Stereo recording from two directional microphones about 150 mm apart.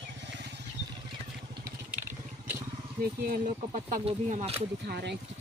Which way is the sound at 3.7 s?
45° right (ahead or behind).